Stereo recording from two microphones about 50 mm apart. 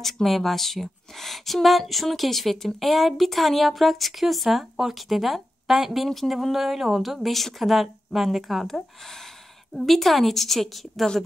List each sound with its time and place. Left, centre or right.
0.0 s a woman's voice: centre